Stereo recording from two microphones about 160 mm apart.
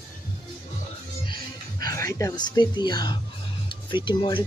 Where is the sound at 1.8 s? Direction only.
20° left (ahead or behind).